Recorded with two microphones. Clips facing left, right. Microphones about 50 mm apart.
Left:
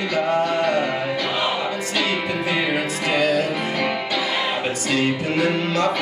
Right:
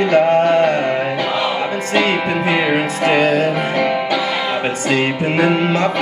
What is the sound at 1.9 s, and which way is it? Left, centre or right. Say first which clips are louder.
Music: right 8 dB; right.